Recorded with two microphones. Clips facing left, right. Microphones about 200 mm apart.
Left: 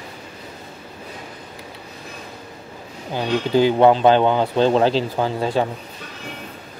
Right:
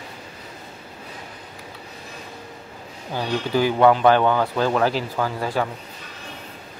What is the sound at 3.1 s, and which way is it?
Speech, 20° left (ahead or behind).